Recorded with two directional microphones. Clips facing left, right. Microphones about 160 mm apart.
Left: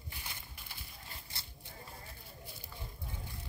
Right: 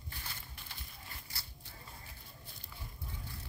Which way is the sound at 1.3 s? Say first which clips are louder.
Left 1 dB; 20° left (ahead or behind).